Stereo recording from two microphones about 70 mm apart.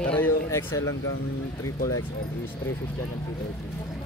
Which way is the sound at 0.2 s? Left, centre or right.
Left.